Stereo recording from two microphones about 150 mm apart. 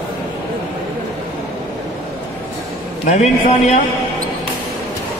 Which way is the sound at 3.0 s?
50° left (ahead or behind).